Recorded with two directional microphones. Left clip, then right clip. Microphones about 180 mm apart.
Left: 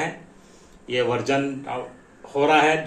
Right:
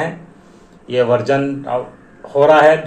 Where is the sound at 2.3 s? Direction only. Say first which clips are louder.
Right 8 dB; 10° left (ahead or behind).